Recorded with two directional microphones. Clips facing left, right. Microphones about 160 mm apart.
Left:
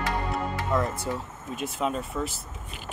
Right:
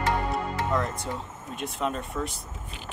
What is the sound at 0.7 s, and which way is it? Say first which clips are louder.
Speech: left 5 dB; 5° left (ahead or behind).